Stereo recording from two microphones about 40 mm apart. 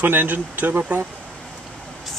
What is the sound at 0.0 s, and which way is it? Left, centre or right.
Speech, right.